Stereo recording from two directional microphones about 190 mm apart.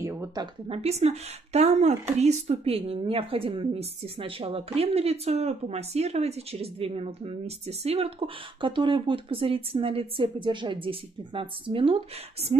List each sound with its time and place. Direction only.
0.0 s speech: 15° right (ahead or behind); by 12.5 s 30° right (ahead or behind)